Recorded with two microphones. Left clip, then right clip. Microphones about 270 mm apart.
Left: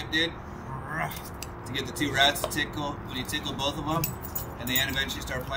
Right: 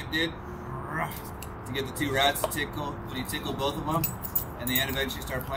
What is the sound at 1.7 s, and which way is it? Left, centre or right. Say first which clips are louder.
Speech: left 1 dB; centre.